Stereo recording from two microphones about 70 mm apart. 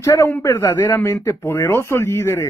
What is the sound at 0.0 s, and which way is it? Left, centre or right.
Speech, left.